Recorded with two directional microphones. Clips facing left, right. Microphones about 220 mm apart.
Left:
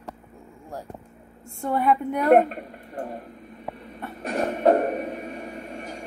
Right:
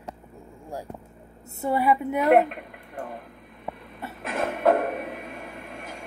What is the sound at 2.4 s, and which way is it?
Speech, 40° left (ahead or behind).